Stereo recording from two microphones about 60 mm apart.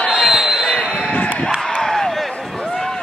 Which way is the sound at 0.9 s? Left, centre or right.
Centre.